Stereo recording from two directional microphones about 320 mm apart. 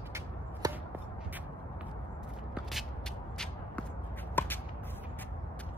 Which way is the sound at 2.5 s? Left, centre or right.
Centre.